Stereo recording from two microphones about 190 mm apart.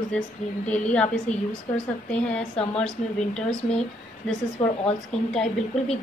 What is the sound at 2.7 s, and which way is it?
Speech, 5° left (ahead or behind).